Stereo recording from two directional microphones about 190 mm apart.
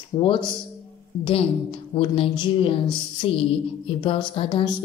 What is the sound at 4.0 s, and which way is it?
Speech, 30° left (ahead or behind).